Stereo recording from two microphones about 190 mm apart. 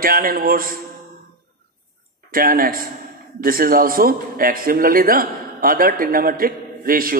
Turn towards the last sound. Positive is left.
turn(degrees=-50)  # may be behind; listen again after turning